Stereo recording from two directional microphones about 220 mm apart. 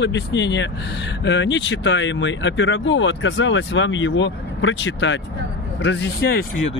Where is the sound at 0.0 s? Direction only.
55° left (ahead or behind).